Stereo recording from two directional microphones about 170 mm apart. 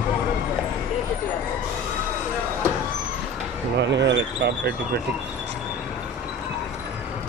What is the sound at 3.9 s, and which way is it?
Basketball bounce, 90° right.